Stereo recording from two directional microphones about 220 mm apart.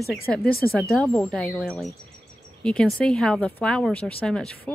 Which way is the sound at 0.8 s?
Centre (ahead or behind).